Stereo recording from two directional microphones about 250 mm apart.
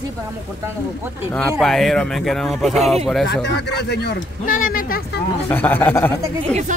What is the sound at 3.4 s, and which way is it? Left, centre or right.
A man's voice, left.